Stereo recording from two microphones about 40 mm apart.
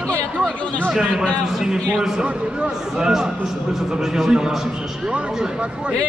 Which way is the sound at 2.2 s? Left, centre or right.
Right.